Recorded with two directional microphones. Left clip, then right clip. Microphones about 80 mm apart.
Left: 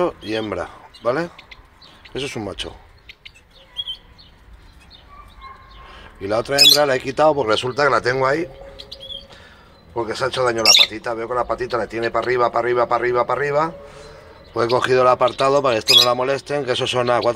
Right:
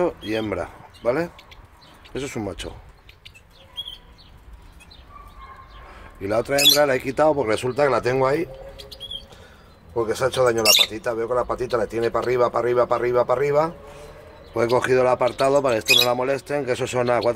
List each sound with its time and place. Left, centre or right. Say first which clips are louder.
0.0 s speech: left 2 dB; right
5.9 s a sound: left 2 dB; right
6.8 s speech: left 2 dB; right
10.0 s speech: even; right
14.8 s speech: left 5 dB; centre